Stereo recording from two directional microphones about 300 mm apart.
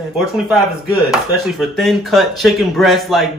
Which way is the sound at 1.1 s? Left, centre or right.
Centre.